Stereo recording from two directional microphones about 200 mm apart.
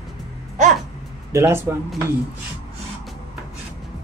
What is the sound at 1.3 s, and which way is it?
Speech, 15° right (ahead or behind).